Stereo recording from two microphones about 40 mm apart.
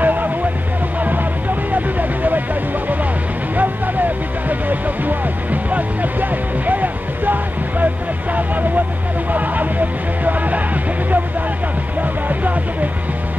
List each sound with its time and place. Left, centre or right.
0.0 s music: right
1.7 s vehicle: right
3.5 s music: right
8.4 s vehicle: right
9.3 s music: right
12.0 s music: right